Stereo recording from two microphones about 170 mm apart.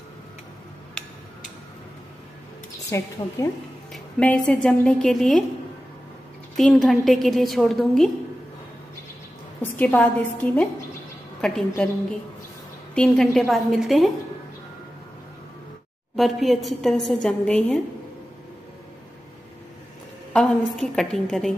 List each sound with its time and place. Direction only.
2.9 s a woman's voice: 20° left (ahead or behind)
3.9 s a woman's voice: 5° left (ahead or behind)
6.5 s a woman's voice: centre (ahead or behind)
9.6 s a woman's voice: 10° left (ahead or behind)
12.9 s a woman's voice: 5° left (ahead or behind)
16.2 s a woman's voice: centre (ahead or behind)
20.7 s a woman's voice: centre (ahead or behind)